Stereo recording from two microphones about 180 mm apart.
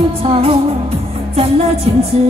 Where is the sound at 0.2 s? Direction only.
30° right (ahead or behind).